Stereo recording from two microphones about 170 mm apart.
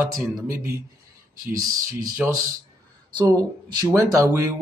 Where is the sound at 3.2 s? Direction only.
20° right (ahead or behind).